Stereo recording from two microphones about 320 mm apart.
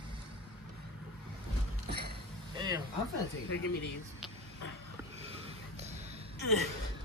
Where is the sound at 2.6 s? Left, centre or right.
Centre.